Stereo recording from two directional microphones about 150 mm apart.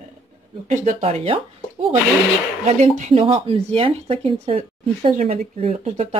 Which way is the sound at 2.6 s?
50° right (ahead or behind).